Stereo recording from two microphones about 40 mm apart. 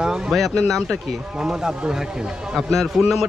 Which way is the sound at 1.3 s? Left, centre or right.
Centre.